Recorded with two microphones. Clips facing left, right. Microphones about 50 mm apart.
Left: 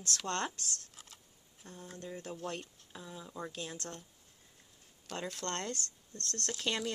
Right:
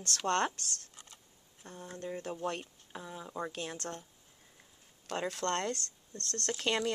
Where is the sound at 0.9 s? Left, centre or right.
Centre.